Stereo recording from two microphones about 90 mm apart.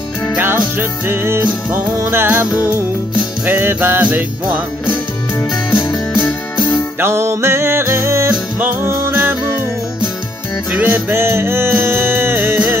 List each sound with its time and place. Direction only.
0.7 s music: 25° right (ahead or behind)
3.4 s music: 25° right (ahead or behind)
5.4 s music: 30° left (ahead or behind)
7.0 s music: 30° right (ahead or behind)
8.3 s music: 20° right (ahead or behind)
10.7 s music: 15° right (ahead or behind)